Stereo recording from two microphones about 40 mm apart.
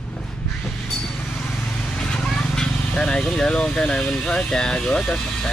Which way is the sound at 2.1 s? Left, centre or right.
Centre.